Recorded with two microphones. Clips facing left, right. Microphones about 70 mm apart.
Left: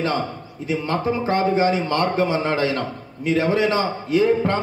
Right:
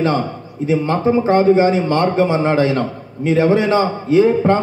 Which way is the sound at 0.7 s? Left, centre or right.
Right.